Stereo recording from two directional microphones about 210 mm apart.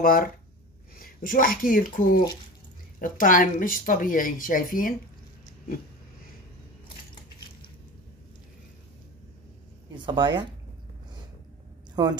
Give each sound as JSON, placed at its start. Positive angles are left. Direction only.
{"t": 0.0, "sound": "speech", "side_deg": 45}
{"t": 9.9, "sound": "speech", "side_deg": -20}
{"t": 11.9, "sound": "a woman's voice", "side_deg": -20}